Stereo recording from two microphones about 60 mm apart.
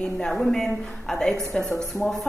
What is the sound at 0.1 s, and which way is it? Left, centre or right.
A woman's voice, centre.